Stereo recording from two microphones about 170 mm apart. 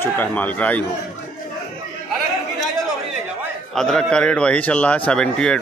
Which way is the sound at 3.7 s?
5° left (ahead or behind).